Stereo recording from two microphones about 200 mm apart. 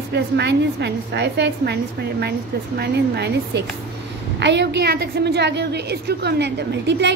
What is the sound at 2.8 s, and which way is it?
A woman's voice, 55° right (ahead or behind).